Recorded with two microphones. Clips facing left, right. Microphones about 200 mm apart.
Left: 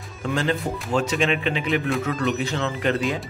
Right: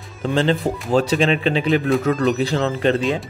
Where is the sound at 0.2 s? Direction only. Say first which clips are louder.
Right 5 dB; 30° right (ahead or behind).